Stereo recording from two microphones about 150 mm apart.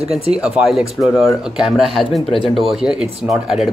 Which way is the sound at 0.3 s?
5° right (ahead or behind).